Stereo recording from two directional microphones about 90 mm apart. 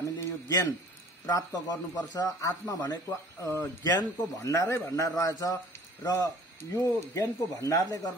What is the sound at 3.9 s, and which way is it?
Speech, 45° left (ahead or behind).